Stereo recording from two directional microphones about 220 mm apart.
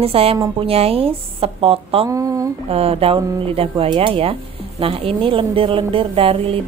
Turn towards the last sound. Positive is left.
turn(degrees=-25)  # may be behind; listen again after turning